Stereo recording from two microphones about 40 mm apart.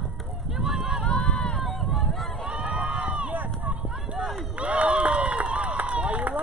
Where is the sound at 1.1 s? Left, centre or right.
Centre.